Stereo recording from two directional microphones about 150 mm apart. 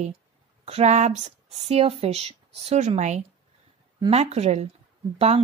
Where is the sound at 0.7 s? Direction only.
45° right (ahead or behind).